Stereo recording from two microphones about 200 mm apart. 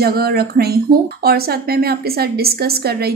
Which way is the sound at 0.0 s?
50° right (ahead or behind).